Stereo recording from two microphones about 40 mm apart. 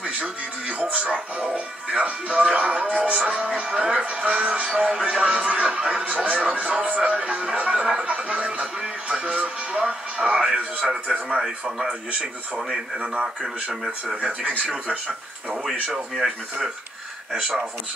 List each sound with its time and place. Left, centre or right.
0.0 s music: right
0.7 s speech: right
10.8 s speech: centre
11.9 s speech: right
12.5 s speech: centre
14.1 s speech: right
15.6 s speech: centre